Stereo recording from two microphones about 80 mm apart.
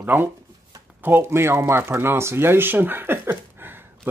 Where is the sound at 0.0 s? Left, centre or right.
Right.